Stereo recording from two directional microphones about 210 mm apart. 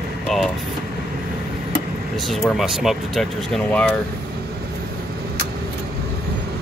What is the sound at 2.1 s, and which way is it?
Speech, centre (ahead or behind).